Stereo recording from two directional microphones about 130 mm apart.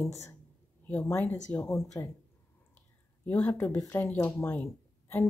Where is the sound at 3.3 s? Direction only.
15° left (ahead or behind).